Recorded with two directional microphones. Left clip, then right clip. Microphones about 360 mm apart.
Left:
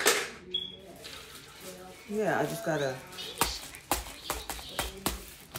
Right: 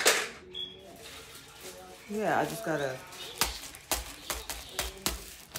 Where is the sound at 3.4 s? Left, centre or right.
Centre.